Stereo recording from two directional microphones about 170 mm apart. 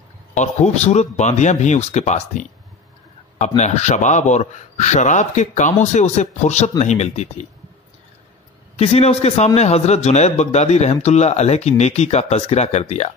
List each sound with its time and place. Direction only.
0.3 s a man's voice: 45° left (ahead or behind)
8.7 s a man's voice: 40° left (ahead or behind)